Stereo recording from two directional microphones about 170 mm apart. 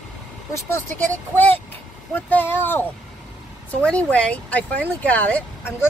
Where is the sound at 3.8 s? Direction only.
5° left (ahead or behind).